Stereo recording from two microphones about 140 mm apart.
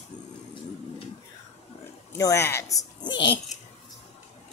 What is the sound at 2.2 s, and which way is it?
Speech, 20° left (ahead or behind).